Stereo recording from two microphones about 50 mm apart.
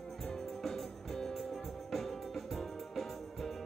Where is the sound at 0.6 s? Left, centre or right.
Centre.